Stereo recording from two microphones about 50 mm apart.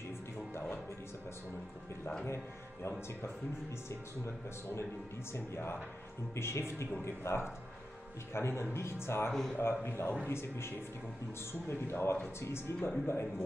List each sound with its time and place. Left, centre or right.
2.2 s speech: left
4.2 s a man's voice: left
6.3 s a man's voice: left
9.3 s speech: centre
9.8 s a man's voice: left
11.9 s a man's voice: left
13.0 s speech: left